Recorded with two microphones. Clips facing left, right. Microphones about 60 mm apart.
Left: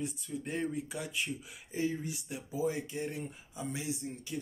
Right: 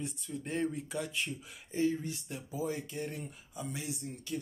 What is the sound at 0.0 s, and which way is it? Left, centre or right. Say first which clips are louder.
Speech: left 2 dB; centre.